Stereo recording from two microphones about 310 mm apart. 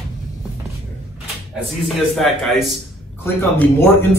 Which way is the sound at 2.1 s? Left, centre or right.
Centre.